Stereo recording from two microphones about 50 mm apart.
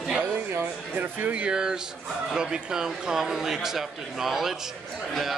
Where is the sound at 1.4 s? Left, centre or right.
Centre.